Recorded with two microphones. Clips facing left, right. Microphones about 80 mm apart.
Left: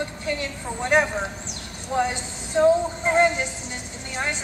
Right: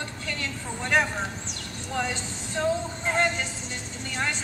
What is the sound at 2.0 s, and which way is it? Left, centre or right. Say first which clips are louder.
Speech: left 6 dB; left.